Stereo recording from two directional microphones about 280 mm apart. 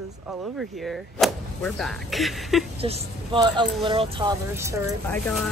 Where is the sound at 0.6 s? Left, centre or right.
Centre.